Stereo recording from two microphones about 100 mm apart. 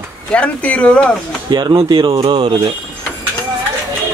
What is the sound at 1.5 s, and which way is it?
Speech, 45° right (ahead or behind).